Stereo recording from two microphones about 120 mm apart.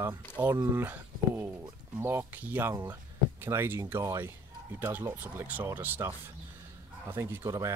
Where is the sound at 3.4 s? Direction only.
20° right (ahead or behind).